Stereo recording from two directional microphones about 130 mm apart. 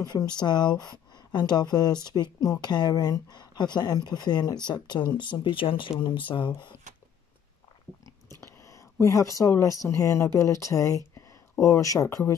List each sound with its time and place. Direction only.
0.0 s speech: 30° left (ahead or behind)
8.6 s speech: 25° left (ahead or behind)